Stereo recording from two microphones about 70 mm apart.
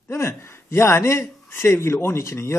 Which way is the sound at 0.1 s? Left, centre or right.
Left.